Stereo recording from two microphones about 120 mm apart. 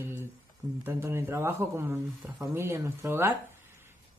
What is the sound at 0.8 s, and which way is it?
Speech, 20° right (ahead or behind).